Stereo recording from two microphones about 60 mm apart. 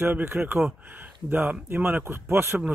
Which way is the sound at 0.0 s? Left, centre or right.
Right.